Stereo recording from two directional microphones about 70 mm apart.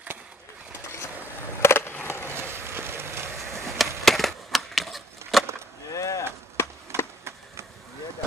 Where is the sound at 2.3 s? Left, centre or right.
Right.